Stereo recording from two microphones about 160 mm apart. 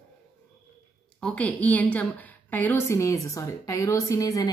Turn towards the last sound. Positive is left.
turn(degrees=20)  # may be behind; listen again after turning